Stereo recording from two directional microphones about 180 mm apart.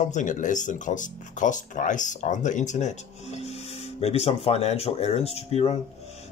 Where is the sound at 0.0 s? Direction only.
45° left (ahead or behind).